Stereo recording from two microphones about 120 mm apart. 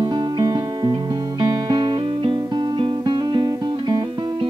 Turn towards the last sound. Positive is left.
turn(degrees=-40)  # may be behind; listen again after turning